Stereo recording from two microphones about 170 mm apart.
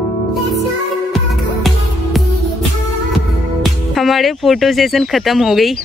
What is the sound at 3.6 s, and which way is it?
Speech, centre (ahead or behind).